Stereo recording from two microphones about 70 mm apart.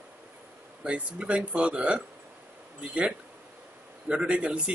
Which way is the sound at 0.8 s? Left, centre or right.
Centre.